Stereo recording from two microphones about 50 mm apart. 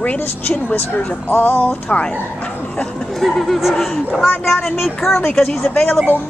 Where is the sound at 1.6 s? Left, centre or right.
Left.